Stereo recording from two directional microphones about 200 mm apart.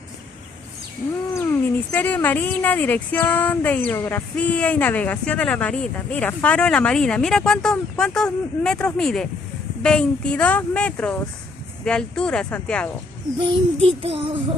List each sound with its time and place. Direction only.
1.5 s speech: 10° left (ahead or behind)
13.4 s child singing: 30° right (ahead or behind)